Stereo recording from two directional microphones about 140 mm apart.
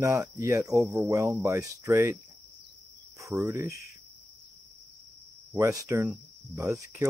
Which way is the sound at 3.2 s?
20° right (ahead or behind).